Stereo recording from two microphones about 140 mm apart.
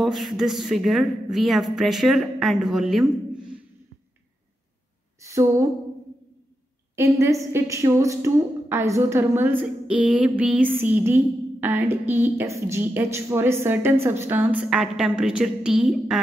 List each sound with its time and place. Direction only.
0.0 s a woman's voice: centre (ahead or behind)
5.2 s speech: 20° right (ahead or behind)
7.2 s a woman's voice: 20° right (ahead or behind); by 16.2 s 5° right (ahead or behind)